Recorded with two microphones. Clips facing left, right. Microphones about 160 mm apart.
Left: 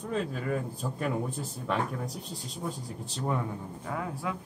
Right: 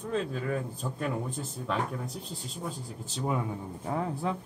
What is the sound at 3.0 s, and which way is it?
Speech, 5° right (ahead or behind).